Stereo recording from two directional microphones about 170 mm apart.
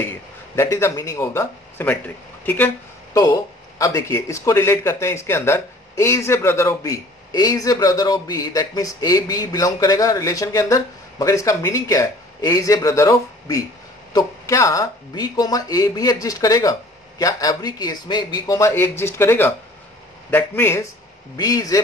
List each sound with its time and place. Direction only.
0.6 s a man's voice: 15° left (ahead or behind)